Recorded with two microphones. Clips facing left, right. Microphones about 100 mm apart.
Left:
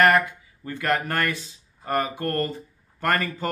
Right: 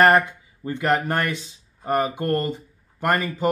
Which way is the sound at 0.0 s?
30° right (ahead or behind).